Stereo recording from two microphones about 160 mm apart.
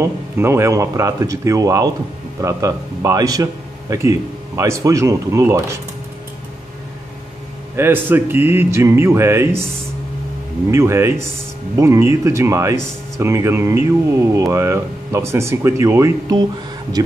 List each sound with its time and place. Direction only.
0.0 s speech: 15° right (ahead or behind)
7.7 s speech: 15° right (ahead or behind)
10.7 s speech: 15° right (ahead or behind)